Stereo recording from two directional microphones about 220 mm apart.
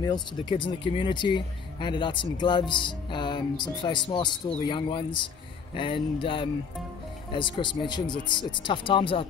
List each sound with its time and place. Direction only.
0.0 s speech: 20° left (ahead or behind)